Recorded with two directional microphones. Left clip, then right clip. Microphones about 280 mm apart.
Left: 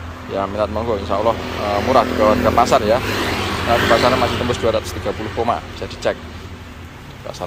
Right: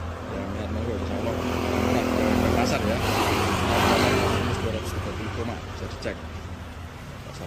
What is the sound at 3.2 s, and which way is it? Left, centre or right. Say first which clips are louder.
Speech: left 3 dB; right.